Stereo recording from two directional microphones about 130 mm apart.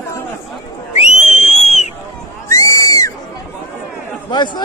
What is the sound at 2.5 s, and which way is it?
Goat, 25° left (ahead or behind).